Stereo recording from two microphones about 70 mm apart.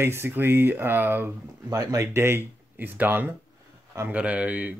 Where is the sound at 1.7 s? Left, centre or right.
Right.